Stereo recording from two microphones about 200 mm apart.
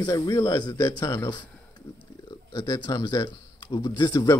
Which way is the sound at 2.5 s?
15° left (ahead or behind).